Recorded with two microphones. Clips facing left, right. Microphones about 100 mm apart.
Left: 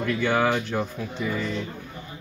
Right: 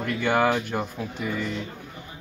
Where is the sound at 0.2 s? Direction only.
10° right (ahead or behind).